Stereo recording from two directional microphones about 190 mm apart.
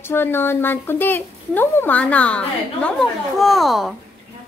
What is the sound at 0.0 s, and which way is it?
Speech, 10° left (ahead or behind).